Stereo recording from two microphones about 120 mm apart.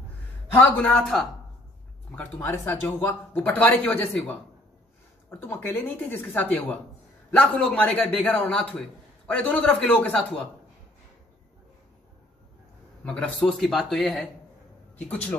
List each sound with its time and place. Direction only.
0.5 s speech: 10° left (ahead or behind)
5.3 s speech: 15° left (ahead or behind)
13.0 s speech: 10° left (ahead or behind)